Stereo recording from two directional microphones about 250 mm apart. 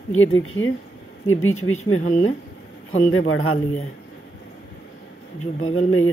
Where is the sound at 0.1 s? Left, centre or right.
Left.